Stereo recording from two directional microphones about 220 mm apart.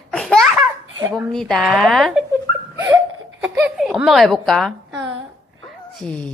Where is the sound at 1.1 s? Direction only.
Centre (ahead or behind).